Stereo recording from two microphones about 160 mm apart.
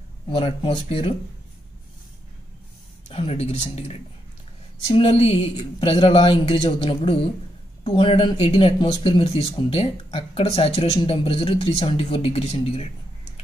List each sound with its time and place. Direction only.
0.3 s speech: 35° left (ahead or behind)
3.1 s speech: 35° left (ahead or behind)